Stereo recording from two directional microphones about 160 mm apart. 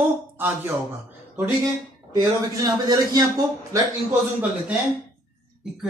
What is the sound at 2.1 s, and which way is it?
Speech, 25° right (ahead or behind).